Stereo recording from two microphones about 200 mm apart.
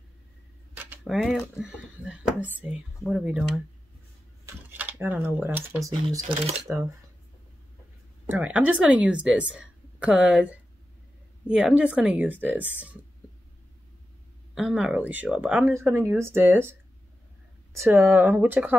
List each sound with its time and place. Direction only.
0.8 s speech: centre (ahead or behind)
4.6 s speech: 10° right (ahead or behind)
6.0 s speech: 25° right (ahead or behind)
8.3 s a woman's voice: 10° right (ahead or behind)
14.5 s a woman's voice: centre (ahead or behind)
18.0 s a woman's voice: 10° right (ahead or behind)